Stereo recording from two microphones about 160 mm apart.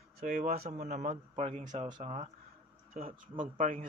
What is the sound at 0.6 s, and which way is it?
Speech, 45° right (ahead or behind).